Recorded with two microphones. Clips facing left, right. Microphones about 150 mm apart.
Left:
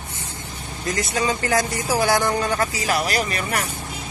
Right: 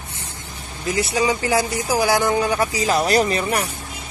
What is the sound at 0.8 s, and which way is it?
Speech, 15° right (ahead or behind).